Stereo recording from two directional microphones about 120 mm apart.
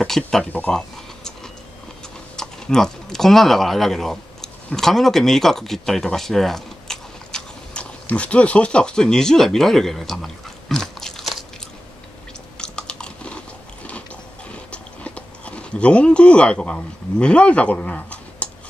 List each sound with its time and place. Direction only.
0.0 s speech: 5° left (ahead or behind)
0.7 s a sound: 5° left (ahead or behind)
2.3 s speech: 5° left (ahead or behind)
12.5 s chewing: 10° left (ahead or behind)
14.5 s chewing: 10° left (ahead or behind)